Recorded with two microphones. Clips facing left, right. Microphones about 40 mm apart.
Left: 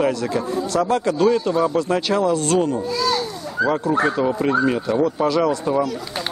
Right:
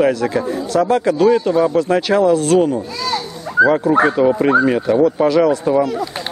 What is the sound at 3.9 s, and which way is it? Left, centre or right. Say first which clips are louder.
Speech: right 6 dB; centre.